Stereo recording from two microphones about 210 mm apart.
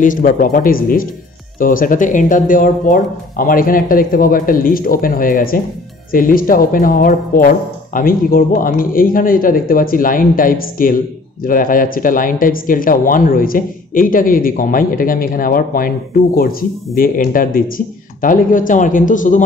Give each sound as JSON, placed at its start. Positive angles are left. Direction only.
{"t": 0.0, "sound": "speech", "side_deg": 40}